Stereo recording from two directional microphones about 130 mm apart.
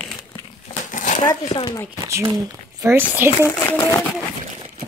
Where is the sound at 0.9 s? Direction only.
75° left (ahead or behind).